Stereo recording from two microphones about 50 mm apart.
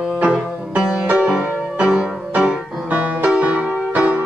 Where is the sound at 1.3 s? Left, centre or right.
Centre.